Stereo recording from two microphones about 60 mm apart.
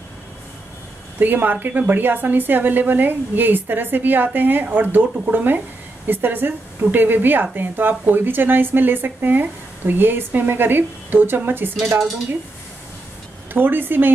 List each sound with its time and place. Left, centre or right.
1.2 s a woman's voice: right
13.5 s a woman's voice: right